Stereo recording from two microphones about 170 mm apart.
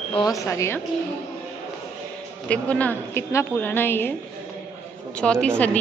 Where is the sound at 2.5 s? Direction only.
10° left (ahead or behind).